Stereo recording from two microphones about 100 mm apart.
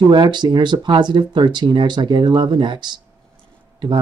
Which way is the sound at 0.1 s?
50° right (ahead or behind).